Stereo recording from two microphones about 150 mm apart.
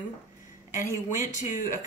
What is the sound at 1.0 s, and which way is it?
Speech, 60° left (ahead or behind).